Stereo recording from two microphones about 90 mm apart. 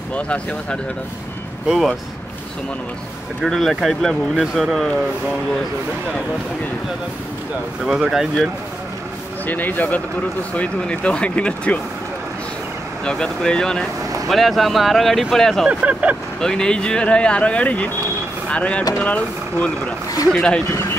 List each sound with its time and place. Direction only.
0.1 s speech: 10° left (ahead or behind)
1.7 s speech: centre (ahead or behind)
3.4 s speech: centre (ahead or behind)
7.8 s speech: 5° right (ahead or behind)
9.5 s speech: 20° left (ahead or behind)
13.0 s speech: 10° left (ahead or behind)
15.7 s speech: 15° right (ahead or behind)
16.3 s speech: 10° left (ahead or behind)